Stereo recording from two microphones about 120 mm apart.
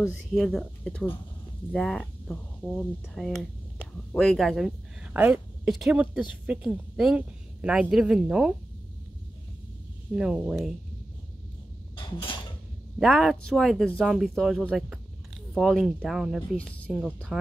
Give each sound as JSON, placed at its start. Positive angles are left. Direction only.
{"t": 0.2, "sound": "speech", "side_deg": 5}
{"t": 5.1, "sound": "a woman's voice", "side_deg": -15}
{"t": 10.1, "sound": "speech", "side_deg": -5}
{"t": 11.9, "sound": "dishes", "side_deg": 45}
{"t": 13.0, "sound": "speech", "side_deg": 0}
{"t": 16.5, "sound": "speech", "side_deg": 10}